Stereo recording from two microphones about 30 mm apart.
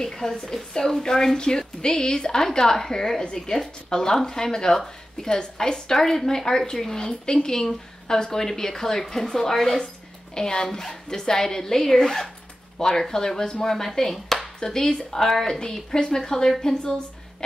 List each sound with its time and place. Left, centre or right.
0.0 s a woman's voice: centre
12.7 s a woman's voice: left
14.1 s chopping: centre
14.6 s a woman's voice: left